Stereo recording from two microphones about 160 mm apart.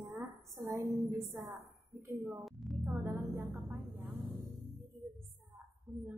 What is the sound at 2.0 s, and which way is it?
Speech, 15° right (ahead or behind).